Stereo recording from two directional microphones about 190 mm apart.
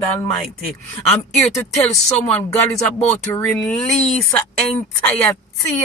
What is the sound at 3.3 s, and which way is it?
Speech, 5° left (ahead or behind).